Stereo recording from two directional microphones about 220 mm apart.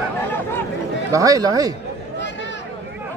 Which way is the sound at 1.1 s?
15° right (ahead or behind).